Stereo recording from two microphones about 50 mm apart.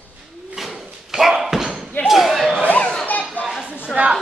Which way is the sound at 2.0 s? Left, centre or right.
Centre.